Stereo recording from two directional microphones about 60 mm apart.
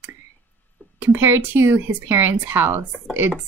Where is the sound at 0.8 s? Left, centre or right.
Left.